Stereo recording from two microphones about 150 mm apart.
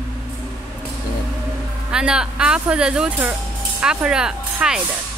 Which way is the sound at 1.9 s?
5° right (ahead or behind).